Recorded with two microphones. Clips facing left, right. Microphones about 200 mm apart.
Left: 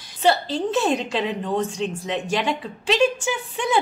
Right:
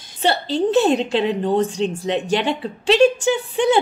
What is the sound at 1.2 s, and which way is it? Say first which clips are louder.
Speech: right 5 dB; 30° right (ahead or behind).